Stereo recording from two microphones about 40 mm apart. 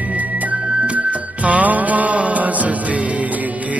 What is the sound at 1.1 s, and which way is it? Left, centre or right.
Music, right.